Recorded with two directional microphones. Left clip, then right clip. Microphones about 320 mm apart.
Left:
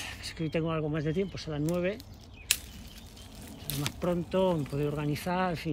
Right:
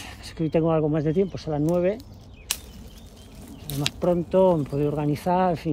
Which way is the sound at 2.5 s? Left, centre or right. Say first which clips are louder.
Left 1 dB; centre.